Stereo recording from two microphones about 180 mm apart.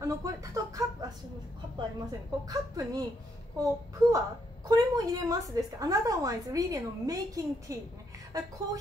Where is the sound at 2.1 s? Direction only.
20° right (ahead or behind).